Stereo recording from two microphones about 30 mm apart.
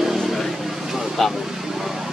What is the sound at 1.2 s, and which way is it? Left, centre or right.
Vehicle, centre.